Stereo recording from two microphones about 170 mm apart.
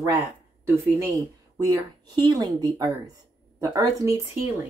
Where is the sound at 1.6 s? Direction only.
25° right (ahead or behind).